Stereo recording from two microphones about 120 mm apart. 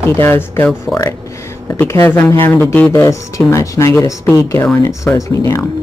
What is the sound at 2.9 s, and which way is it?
Speech, 25° left (ahead or behind).